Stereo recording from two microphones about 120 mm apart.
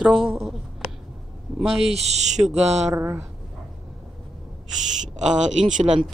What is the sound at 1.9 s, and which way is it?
Speech, 65° right (ahead or behind).